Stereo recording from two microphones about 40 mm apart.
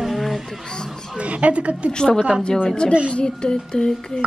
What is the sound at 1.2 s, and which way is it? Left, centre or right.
Speech, right.